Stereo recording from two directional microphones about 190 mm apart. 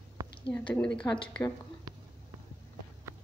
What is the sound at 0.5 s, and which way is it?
Speech, 5° left (ahead or behind).